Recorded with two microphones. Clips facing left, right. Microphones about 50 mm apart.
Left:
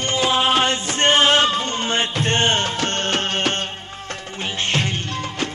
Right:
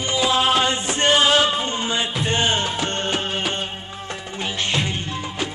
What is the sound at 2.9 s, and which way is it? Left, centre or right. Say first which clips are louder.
Music: left 2 dB; left.